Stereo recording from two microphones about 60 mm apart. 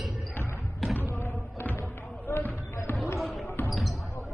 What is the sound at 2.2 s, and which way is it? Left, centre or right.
Basketball bounce, left.